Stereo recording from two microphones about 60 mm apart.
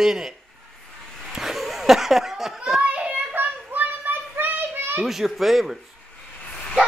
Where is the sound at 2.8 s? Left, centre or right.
Right.